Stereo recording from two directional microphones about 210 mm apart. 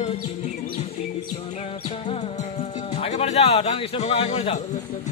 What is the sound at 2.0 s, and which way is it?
Speech, 30° left (ahead or behind).